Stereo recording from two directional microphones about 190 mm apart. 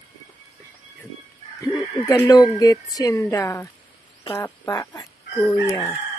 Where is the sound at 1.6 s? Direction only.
15° left (ahead or behind).